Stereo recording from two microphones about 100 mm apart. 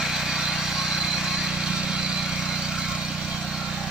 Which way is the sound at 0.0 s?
5° right (ahead or behind).